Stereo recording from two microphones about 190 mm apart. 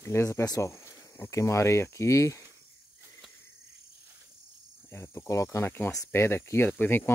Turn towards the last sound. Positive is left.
turn(degrees=10)  # may be behind; listen again after turning